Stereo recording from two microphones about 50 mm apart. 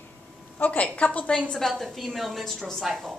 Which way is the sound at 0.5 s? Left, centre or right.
Left.